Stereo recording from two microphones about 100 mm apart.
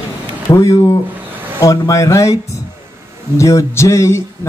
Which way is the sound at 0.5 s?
30° left (ahead or behind).